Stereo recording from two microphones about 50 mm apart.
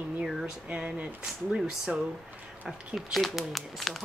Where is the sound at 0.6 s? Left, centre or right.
Right.